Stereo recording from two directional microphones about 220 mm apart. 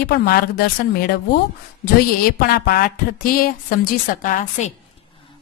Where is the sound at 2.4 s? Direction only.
45° left (ahead or behind).